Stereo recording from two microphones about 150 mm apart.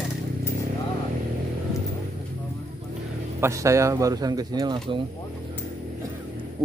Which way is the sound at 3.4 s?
20° right (ahead or behind).